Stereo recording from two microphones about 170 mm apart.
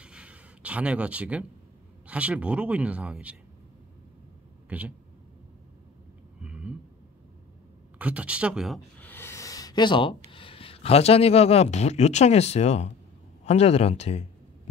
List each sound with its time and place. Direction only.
0.0 s a sound: 5° right (ahead or behind)
2.0 s speech: 10° right (ahead or behind)
4.6 s speech: 10° right (ahead or behind)
6.4 s a sound: 5° right (ahead or behind)
8.0 s speech: 10° right (ahead or behind)
9.0 s speech: 15° left (ahead or behind); by 14.2 s 40° left (ahead or behind)